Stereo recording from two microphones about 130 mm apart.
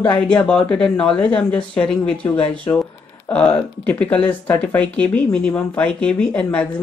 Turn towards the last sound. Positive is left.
turn(degrees=10)  # may be behind; listen again after turning